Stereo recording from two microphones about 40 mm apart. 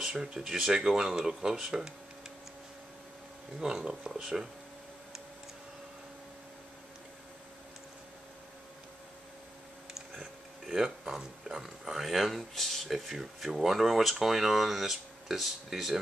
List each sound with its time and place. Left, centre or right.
0.0 s speech: centre
3.6 s speech: centre
10.7 s speech: centre